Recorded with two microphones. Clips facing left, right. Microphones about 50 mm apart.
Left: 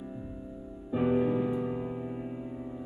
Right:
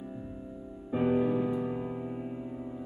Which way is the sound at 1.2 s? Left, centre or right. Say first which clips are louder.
Even; centre.